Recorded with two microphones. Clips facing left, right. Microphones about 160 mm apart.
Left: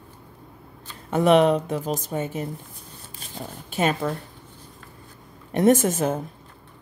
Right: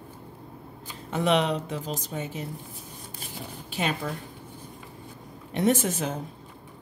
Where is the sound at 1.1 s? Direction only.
50° left (ahead or behind).